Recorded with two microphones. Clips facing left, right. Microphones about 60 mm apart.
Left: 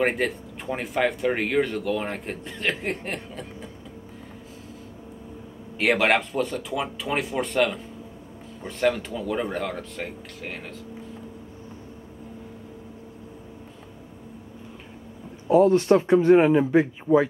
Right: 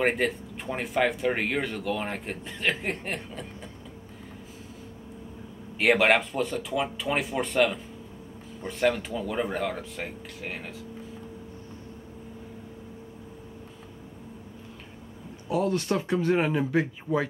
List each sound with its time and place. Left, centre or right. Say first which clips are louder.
0.0 s speech: left 1 dB; centre
5.8 s speech: even; centre
15.4 s speech: left 9 dB; left